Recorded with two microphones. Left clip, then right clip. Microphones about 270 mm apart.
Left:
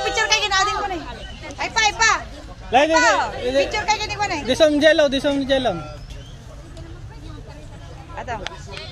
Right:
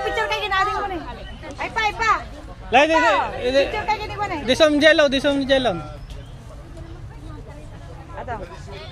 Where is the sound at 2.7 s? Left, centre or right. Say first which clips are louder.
Even; centre.